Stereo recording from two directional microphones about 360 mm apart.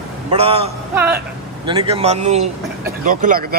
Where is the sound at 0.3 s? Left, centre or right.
Centre.